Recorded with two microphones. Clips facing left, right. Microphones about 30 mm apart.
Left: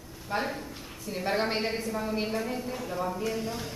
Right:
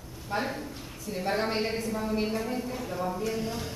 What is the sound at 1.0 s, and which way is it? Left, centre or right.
A woman's voice, centre.